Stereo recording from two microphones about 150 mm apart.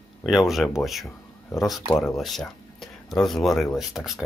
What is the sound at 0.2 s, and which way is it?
Speech, centre (ahead or behind).